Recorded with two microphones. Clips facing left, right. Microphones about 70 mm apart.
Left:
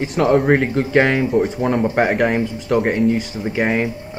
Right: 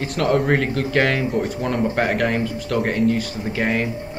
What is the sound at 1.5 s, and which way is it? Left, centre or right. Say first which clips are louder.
Speech: left 4 dB; centre.